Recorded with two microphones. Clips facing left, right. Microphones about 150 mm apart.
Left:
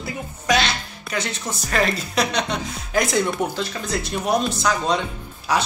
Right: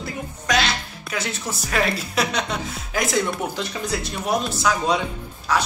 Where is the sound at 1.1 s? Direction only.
5° right (ahead or behind).